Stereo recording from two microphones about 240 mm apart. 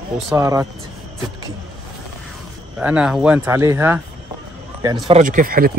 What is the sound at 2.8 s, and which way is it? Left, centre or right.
Speech, centre.